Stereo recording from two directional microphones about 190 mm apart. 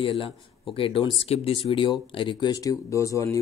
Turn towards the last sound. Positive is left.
turn(degrees=15)  # may be behind; listen again after turning